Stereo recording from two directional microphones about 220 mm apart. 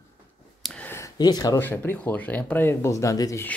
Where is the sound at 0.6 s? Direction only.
5° left (ahead or behind).